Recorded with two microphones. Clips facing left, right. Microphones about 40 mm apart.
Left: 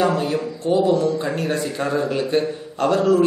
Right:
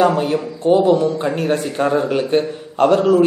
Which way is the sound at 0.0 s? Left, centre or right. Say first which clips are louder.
Right 4 dB; right.